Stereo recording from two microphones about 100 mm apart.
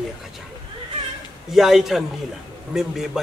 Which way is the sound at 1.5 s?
5° right (ahead or behind).